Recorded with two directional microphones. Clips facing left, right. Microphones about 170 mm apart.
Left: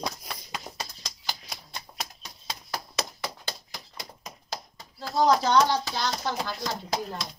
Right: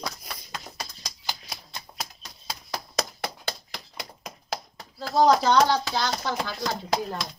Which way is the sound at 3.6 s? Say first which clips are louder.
Right 3 dB; 70° right (ahead or behind).